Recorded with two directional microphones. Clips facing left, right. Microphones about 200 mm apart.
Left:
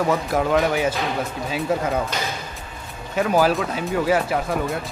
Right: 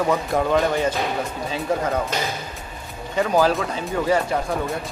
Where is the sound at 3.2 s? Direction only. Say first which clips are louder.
Even; 5° left (ahead or behind).